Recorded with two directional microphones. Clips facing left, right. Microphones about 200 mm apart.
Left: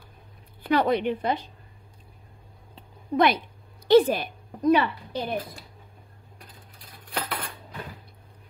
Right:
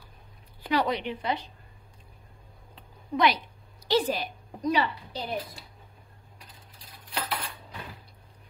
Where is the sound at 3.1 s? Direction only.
55° left (ahead or behind).